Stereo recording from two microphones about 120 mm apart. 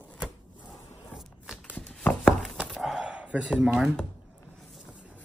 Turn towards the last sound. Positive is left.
turn(degrees=-10)  # may be behind; listen again after turning